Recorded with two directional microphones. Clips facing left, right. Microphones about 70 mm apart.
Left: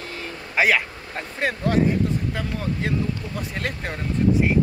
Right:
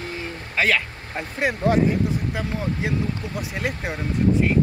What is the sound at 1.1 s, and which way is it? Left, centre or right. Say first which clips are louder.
Speech: right 2 dB; centre.